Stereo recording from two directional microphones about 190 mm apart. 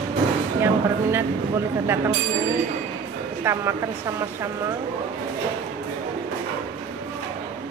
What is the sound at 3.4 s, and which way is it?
Speech, 15° right (ahead or behind).